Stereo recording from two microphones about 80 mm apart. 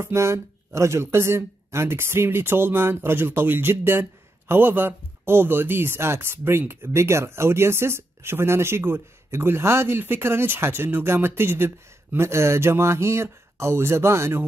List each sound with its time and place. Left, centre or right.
0.0 s speech: right